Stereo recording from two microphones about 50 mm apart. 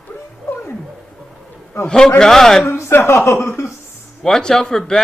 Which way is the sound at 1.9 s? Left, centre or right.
Centre.